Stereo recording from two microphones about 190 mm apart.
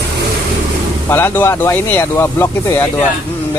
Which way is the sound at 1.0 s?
10° left (ahead or behind).